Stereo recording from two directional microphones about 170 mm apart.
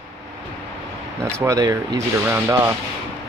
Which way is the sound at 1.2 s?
15° right (ahead or behind).